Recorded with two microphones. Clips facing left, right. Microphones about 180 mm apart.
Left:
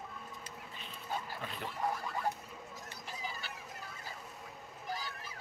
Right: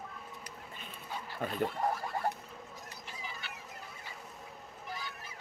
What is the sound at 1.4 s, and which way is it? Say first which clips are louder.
Speech: right 9 dB; 50° right (ahead or behind).